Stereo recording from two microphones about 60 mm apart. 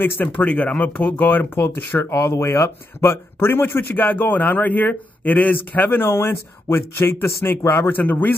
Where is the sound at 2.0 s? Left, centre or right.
Left.